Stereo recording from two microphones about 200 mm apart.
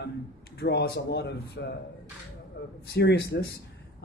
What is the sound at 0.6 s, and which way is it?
Speech, 55° left (ahead or behind).